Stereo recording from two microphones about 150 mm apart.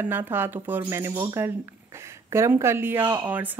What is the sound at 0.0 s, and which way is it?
Speech, 15° right (ahead or behind).